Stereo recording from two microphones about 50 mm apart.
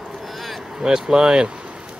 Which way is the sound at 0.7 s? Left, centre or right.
Centre.